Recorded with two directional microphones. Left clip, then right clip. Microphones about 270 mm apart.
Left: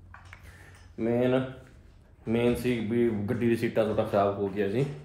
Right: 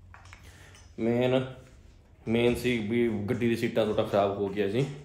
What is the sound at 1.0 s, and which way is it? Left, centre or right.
Speech, centre.